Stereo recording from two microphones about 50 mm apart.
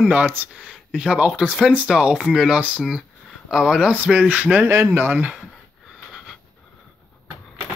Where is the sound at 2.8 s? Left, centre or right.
Centre.